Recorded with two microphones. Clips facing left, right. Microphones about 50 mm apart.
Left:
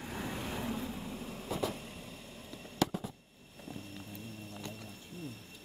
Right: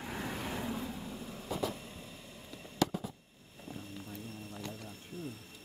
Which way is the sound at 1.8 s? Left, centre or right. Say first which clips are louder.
Left 1 dB; left.